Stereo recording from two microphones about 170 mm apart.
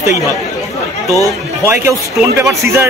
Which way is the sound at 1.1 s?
15° right (ahead or behind).